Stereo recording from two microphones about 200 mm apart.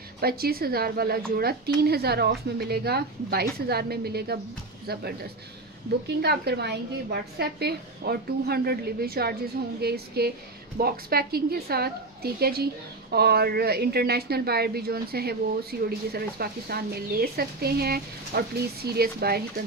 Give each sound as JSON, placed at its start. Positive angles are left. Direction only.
{"t": 0.2, "sound": "a woman's voice", "side_deg": -50}
{"t": 6.2, "sound": "a woman's voice", "side_deg": -55}